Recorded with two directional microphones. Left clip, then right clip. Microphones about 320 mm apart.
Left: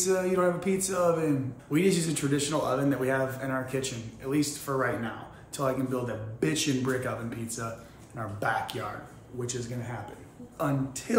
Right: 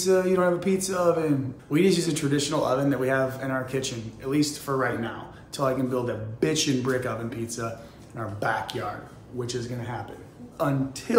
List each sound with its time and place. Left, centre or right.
0.0 s a man's voice: centre
10.6 s a man's voice: centre